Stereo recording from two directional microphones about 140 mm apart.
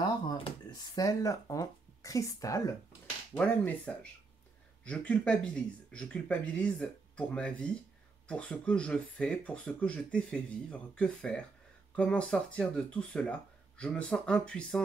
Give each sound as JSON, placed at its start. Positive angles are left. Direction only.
{"t": 0.0, "sound": "speech", "side_deg": 35}
{"t": 3.3, "sound": "speech", "side_deg": 10}